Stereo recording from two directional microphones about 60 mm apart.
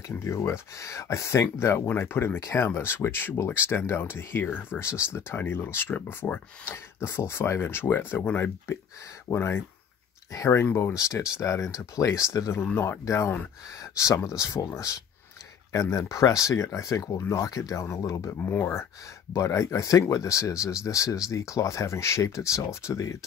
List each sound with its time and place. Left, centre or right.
0.2 s speech: left
4.5 s speech: left
4.7 s speech: left
15.7 s speech: left
18.4 s speech: left
19.3 s speech: left